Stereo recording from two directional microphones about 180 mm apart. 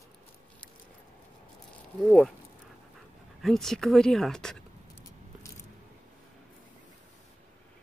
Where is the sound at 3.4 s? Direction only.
Centre (ahead or behind).